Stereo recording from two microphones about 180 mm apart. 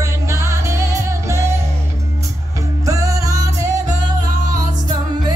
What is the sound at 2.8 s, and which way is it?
Music, 20° right (ahead or behind).